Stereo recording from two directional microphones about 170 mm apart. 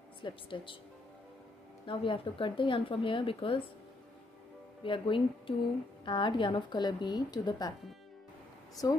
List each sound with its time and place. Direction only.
0.2 s a woman's voice: 30° left (ahead or behind)
1.9 s speech: 30° left (ahead or behind)
4.8 s a woman's voice: 30° left (ahead or behind)
8.8 s a woman's voice: 20° left (ahead or behind)